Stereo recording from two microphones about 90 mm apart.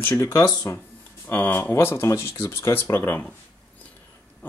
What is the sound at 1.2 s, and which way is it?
Speech, 20° left (ahead or behind).